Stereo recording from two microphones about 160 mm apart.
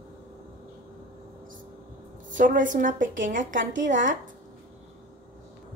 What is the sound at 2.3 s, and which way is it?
A woman's voice, 55° right (ahead or behind).